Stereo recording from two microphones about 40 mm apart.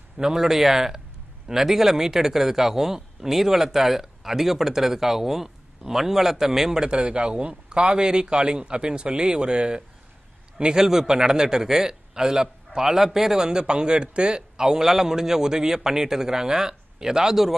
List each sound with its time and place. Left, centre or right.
0.2 s a man's voice: centre
6.8 s a man's voice: right; by 17.6 s centre